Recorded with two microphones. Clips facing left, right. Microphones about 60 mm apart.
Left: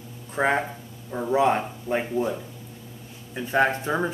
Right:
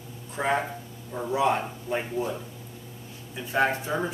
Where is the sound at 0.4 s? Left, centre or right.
Left.